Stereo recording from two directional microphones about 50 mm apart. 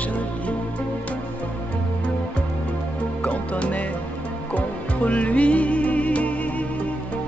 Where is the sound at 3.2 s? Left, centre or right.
Left.